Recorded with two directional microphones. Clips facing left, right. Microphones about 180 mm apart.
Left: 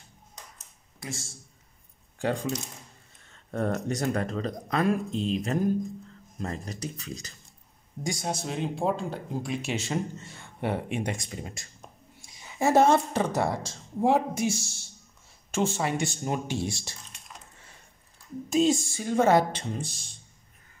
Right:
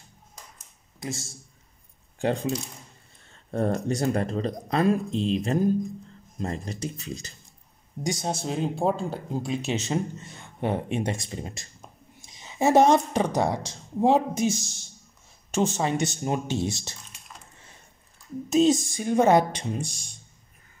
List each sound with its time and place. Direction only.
0.9 s speech: 20° right (ahead or behind)
3.3 s speech: 35° right (ahead or behind)
9.4 s a woman's voice: 25° right (ahead or behind)
18.5 s a woman's voice: 20° right (ahead or behind)